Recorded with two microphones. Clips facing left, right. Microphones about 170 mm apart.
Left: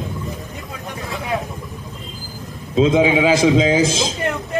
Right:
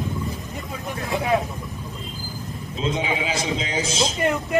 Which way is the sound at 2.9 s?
90° left.